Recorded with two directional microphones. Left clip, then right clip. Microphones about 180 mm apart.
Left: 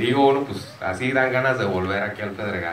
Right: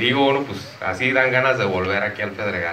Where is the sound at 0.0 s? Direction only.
20° right (ahead or behind).